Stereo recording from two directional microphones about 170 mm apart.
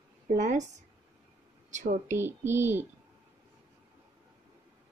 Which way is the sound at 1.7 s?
45° right (ahead or behind).